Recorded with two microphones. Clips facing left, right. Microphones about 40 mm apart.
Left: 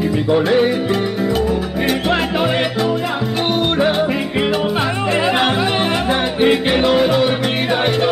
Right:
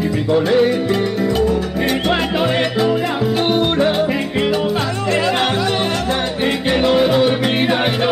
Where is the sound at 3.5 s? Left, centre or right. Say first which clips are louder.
Left 2 dB; centre.